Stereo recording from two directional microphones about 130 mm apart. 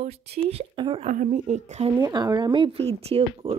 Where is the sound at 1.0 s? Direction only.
65° right (ahead or behind).